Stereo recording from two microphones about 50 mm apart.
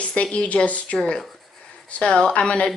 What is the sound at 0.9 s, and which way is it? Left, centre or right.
A woman's voice, centre.